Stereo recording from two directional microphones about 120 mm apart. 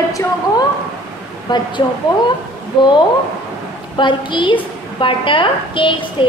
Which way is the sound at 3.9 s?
40° left (ahead or behind).